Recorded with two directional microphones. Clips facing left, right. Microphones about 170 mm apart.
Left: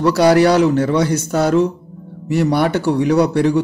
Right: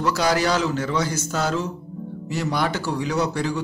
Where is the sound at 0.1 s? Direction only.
65° left (ahead or behind).